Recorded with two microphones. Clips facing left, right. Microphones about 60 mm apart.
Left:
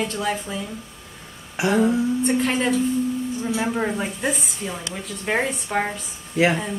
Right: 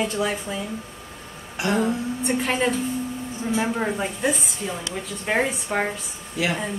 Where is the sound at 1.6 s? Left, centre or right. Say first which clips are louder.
Left 3 dB; centre.